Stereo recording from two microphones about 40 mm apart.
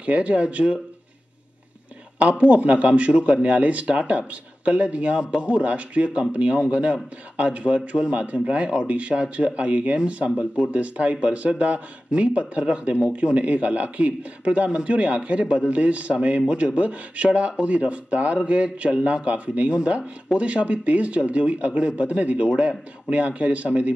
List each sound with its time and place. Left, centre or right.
0.0 s a man's voice: right
2.2 s a man's voice: right